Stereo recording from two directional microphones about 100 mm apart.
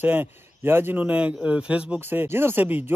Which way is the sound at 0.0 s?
20° right (ahead or behind).